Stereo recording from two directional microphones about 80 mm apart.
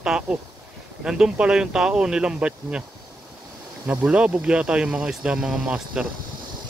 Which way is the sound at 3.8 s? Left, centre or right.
Centre.